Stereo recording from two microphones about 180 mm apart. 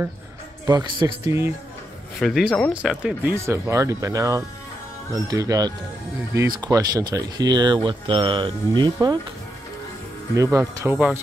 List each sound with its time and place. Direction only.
0.7 s speech: 20° right (ahead or behind)
2.1 s speech: centre (ahead or behind)
3.4 s speech: 15° right (ahead or behind)
10.3 s speech: 15° right (ahead or behind)